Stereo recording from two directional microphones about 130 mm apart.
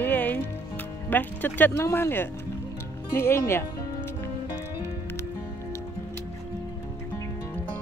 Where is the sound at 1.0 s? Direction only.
15° left (ahead or behind).